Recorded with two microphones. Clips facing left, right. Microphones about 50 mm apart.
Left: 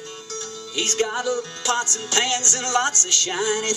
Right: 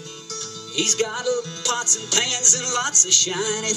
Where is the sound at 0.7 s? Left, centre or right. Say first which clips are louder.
Left 1 dB; left.